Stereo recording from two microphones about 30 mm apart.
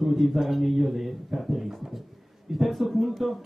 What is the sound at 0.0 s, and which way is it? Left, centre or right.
A man's voice, centre.